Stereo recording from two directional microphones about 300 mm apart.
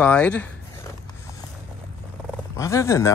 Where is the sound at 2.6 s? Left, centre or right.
Centre.